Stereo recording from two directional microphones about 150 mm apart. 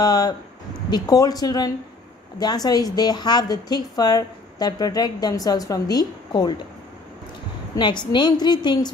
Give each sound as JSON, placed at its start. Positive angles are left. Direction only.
{"t": 0.0, "sound": "a woman's voice", "side_deg": 25}
{"t": 7.7, "sound": "a woman's voice", "side_deg": 30}